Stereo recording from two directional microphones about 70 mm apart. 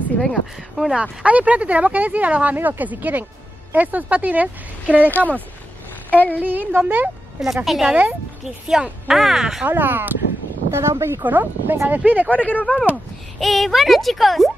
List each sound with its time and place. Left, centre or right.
0.2 s speech: centre
1.2 s speech: right
6.1 s a woman's voice: left
6.4 s speech: right
7.3 s speech: centre
7.9 s speech: centre
9.7 s speech: right
10.7 s speech: right
11.2 s speech: right
12.4 s a woman's voice: left
12.9 s speech: centre